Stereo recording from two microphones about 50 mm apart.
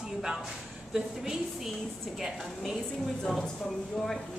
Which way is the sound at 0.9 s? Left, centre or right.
Centre.